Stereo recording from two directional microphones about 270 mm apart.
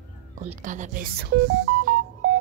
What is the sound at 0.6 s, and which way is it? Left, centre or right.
Speech, right.